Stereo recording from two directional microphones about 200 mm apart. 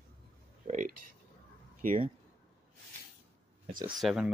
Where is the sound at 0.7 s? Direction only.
40° right (ahead or behind).